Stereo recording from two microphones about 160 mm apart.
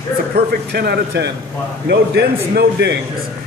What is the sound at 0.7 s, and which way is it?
A man's voice, 90° right.